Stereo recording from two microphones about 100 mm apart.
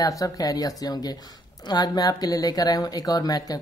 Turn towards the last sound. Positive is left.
turn(degrees=40)  # may be behind; listen again after turning